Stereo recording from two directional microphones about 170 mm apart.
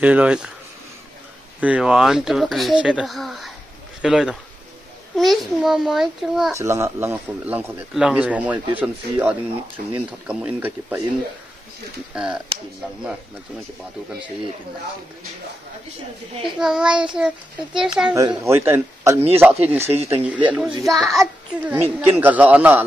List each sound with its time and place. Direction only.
0.0 s speech: 10° right (ahead or behind)
1.6 s speech: 5° right (ahead or behind)
6.5 s speech: 15° right (ahead or behind)
12.1 s speech: 5° right (ahead or behind)
16.5 s speech: 5° right (ahead or behind)
18.1 s speech: 20° right (ahead or behind)
19.9 s speech: 35° right (ahead or behind)
20.2 s speech: 10° right (ahead or behind)
21.7 s speech: 15° right (ahead or behind)